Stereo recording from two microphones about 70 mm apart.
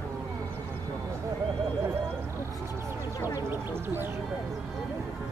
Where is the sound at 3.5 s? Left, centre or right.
Right.